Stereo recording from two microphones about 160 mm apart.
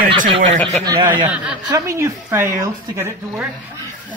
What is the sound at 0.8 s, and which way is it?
Speech, 15° right (ahead or behind).